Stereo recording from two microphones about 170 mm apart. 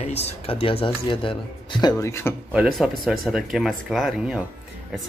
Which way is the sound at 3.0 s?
Centre (ahead or behind).